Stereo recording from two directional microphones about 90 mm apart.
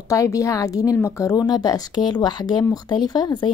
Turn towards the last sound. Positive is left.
turn(degrees=55)  # may be behind; listen again after turning